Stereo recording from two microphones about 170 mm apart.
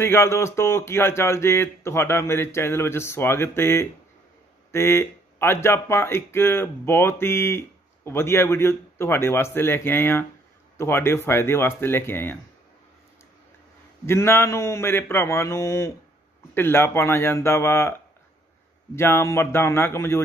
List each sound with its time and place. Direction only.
0.0 s speech: 15° left (ahead or behind)
14.0 s speech: 15° left (ahead or behind)
18.9 s speech: 15° left (ahead or behind)